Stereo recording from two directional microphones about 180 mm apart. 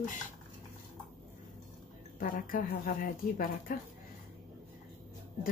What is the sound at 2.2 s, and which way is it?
A woman's voice, 50° left (ahead or behind).